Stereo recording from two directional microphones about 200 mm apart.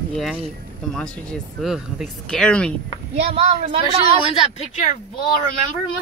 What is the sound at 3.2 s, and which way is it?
Speech, 30° right (ahead or behind).